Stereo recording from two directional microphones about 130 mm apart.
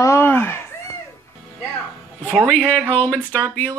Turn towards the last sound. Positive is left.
turn(degrees=10)  # may be behind; listen again after turning